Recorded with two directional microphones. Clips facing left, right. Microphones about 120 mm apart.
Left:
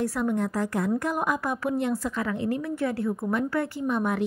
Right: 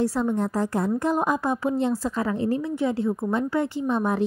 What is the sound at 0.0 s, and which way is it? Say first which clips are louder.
A woman's voice: right 3 dB; 30° right (ahead or behind).